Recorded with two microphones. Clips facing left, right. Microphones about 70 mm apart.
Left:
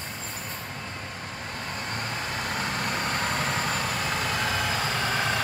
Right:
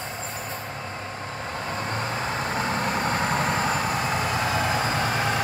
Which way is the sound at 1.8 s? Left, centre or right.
Right.